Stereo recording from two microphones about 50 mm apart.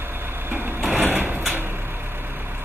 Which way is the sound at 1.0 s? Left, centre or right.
Right.